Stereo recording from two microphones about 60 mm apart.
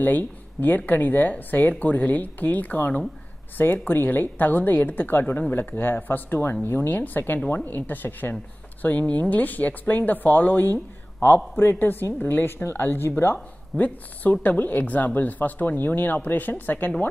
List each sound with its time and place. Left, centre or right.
0.0 s a woman's voice: left